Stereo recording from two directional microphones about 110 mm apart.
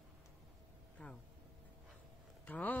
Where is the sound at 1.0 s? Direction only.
15° left (ahead or behind).